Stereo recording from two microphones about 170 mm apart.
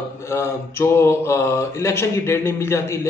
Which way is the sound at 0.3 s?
15° left (ahead or behind).